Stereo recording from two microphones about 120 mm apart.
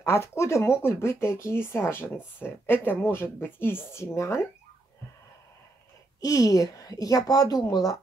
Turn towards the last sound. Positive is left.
turn(degrees=30)  # may be behind; listen again after turning